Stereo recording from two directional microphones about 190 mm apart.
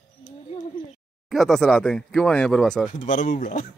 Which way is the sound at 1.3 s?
Centre (ahead or behind).